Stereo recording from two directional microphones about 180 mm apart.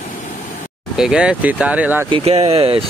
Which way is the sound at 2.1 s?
35° right (ahead or behind).